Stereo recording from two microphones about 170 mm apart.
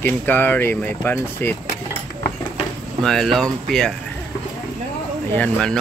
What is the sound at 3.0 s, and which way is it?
Speech, centre (ahead or behind).